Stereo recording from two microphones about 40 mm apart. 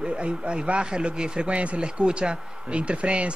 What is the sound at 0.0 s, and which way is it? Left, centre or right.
A man's voice, right.